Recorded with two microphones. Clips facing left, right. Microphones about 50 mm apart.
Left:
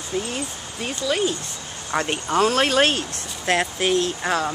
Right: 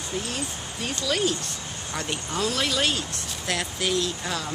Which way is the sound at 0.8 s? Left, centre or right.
Centre.